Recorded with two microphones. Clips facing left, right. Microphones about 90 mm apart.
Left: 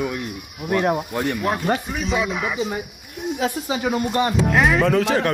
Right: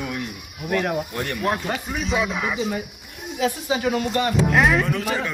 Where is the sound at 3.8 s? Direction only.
25° left (ahead or behind).